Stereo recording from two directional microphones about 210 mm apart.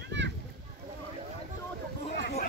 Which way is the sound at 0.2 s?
60° right (ahead or behind).